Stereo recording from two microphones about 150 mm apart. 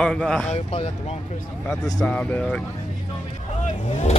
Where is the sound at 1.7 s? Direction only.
5° left (ahead or behind).